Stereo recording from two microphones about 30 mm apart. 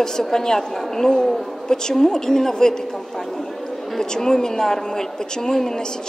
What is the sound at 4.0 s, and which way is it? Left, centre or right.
A woman's voice, centre.